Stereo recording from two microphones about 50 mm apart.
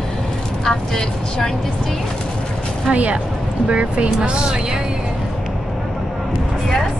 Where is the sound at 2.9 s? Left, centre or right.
Right.